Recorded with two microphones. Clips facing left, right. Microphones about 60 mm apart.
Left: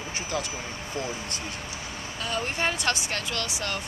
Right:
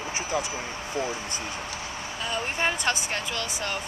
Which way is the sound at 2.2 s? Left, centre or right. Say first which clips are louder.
Even; centre.